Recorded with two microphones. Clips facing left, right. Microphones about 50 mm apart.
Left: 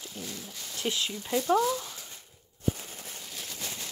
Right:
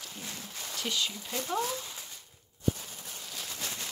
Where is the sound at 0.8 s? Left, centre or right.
Centre.